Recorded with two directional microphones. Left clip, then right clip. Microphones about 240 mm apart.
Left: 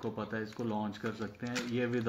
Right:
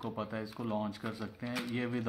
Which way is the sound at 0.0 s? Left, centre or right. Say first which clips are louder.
Left 1 dB; centre.